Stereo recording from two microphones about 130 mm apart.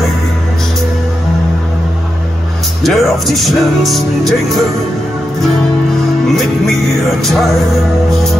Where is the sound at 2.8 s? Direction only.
Centre (ahead or behind).